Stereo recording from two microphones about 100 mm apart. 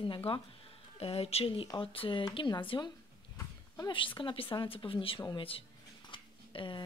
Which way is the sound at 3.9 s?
60° left (ahead or behind).